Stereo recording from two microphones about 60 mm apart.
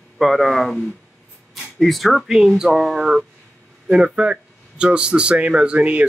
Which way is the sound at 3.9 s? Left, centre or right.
Centre.